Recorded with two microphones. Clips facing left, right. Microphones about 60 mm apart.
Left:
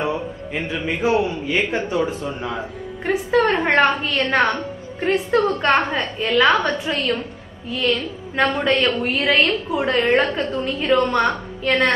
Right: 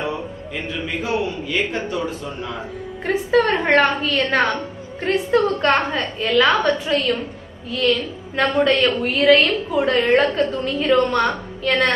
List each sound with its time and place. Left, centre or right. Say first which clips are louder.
0.0 s a man's voice: left 2 dB; left
3.1 s a woman's voice: even; centre